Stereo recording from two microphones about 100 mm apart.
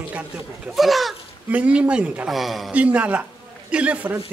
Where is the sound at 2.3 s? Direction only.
Centre (ahead or behind).